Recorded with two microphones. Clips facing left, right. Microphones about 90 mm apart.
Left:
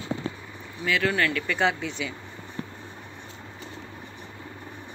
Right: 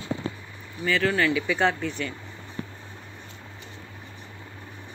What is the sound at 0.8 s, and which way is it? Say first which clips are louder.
Speech: right 1 dB; centre (ahead or behind).